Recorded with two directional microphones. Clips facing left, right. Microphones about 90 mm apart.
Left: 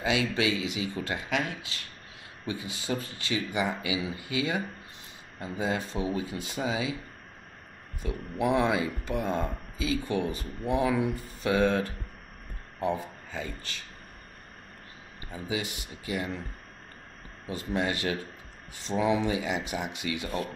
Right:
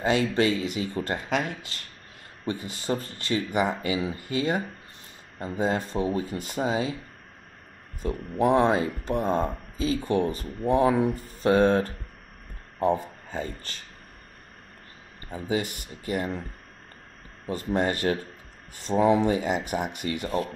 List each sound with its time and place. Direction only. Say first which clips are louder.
0.0 s speech: right 4 dB; 45° right (ahead or behind)
8.0 s speech: right 5 dB; 40° right (ahead or behind)
15.3 s speech: right 5 dB; 45° right (ahead or behind)
17.5 s speech: right 4 dB; 45° right (ahead or behind)